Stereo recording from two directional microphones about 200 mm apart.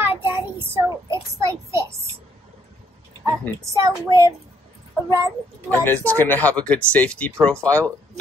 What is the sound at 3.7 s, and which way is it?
Child singing, 15° right (ahead or behind).